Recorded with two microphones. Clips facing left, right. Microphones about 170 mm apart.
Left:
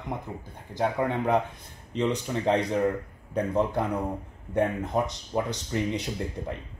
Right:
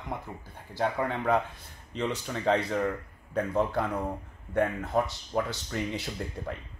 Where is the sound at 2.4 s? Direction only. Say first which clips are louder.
Left 2 dB; 20° left (ahead or behind).